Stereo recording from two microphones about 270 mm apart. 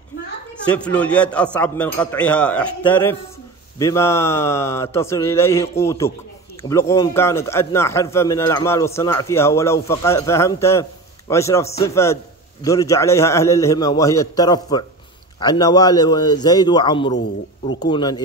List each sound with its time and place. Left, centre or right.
0.7 s a man's voice: centre